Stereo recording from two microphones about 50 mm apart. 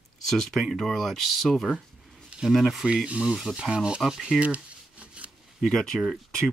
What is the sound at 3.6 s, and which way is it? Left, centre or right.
Speech, centre.